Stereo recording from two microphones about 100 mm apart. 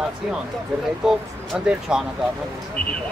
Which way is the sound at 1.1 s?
5° right (ahead or behind).